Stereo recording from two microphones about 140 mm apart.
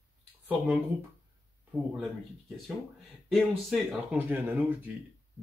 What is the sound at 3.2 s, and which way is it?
Speech, centre (ahead or behind).